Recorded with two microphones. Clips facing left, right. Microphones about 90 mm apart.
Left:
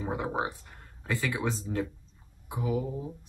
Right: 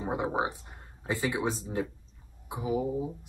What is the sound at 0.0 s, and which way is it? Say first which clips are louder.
Speech: right 2 dB; 20° right (ahead or behind).